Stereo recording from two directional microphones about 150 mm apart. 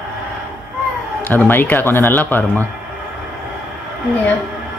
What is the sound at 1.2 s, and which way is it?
Speech, 15° left (ahead or behind).